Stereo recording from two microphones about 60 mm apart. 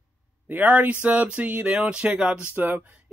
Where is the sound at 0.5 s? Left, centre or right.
Right.